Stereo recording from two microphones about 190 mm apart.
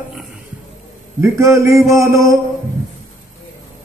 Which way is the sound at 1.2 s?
15° right (ahead or behind).